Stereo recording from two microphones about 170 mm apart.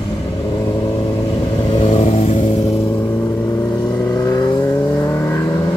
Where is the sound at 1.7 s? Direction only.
40° left (ahead or behind).